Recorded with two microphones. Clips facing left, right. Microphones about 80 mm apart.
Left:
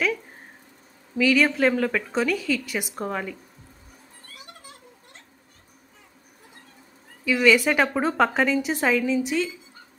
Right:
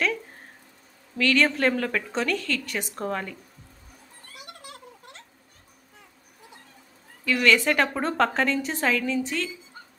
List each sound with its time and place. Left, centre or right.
1.1 s a woman's voice: centre
4.4 s a sound: right
7.2 s a woman's voice: centre